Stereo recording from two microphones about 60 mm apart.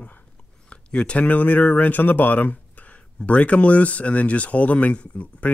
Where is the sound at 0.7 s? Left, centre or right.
Centre.